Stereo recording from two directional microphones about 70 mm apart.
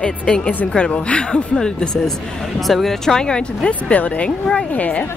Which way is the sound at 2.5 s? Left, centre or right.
Centre.